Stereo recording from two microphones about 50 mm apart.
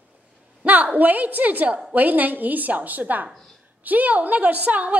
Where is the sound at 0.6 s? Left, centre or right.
Right.